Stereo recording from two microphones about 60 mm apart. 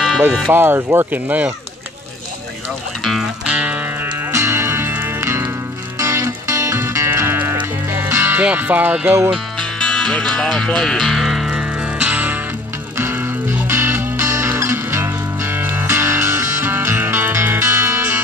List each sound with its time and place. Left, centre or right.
0.5 s speech: right
3.0 s speech: centre
3.4 s music: right
4.0 s music: right
5.9 s music: right
8.4 s speech: right
9.8 s music: centre
11.5 s music: centre
12.9 s music: right